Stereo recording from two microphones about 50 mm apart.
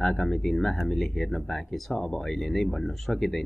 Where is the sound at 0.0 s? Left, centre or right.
Centre.